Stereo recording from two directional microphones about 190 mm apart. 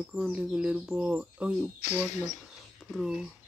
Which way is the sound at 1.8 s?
40° left (ahead or behind).